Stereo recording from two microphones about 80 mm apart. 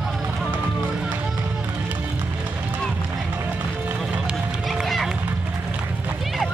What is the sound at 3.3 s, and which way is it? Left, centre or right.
Music, right.